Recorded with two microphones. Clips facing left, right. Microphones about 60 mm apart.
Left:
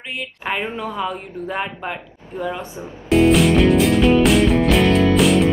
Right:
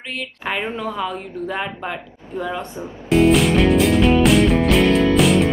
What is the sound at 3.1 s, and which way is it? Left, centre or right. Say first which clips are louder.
Music: left 1 dB; centre.